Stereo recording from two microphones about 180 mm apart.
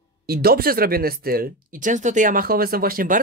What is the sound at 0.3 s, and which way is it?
Speech, 60° right (ahead or behind).